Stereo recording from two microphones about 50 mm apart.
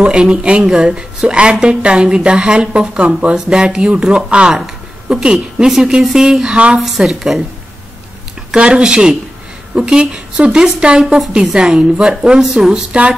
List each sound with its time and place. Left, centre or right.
0.0 s a woman's voice: centre
6.8 s a woman's voice: centre
8.5 s a woman's voice: centre
11.1 s a woman's voice: centre